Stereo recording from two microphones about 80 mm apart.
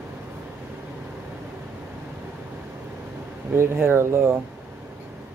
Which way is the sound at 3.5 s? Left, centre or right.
Right.